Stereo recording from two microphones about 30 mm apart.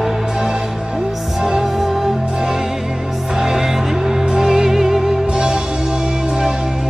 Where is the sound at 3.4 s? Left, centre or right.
Centre.